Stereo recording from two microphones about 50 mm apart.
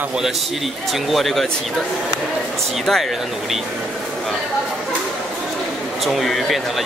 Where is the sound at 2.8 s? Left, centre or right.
Centre.